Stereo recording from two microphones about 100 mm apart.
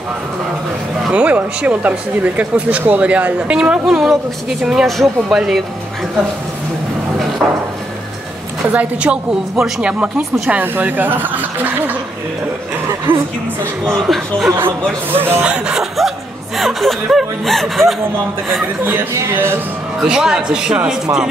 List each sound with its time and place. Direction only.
1.1 s speech: 15° right (ahead or behind)
8.6 s speech: 15° right (ahead or behind)
13.1 s speech: 20° right (ahead or behind)
13.8 s speech: centre (ahead or behind)
14.6 s speech: 20° right (ahead or behind)
15.4 s chuckle: 10° right (ahead or behind)
16.5 s speech: centre (ahead or behind)
18.9 s speech: 20° right (ahead or behind)
20.0 s speech: 5° right (ahead or behind)